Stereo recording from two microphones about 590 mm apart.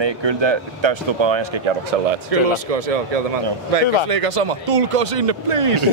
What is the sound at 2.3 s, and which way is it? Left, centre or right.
Speech, right.